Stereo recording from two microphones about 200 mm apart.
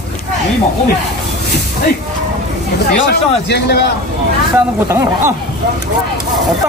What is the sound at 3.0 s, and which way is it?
Speech, 60° left (ahead or behind).